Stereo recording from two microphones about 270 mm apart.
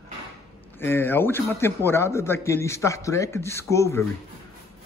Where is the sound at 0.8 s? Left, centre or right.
Centre.